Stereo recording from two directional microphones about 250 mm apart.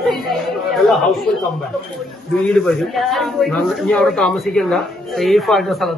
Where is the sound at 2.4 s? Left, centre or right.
Centre.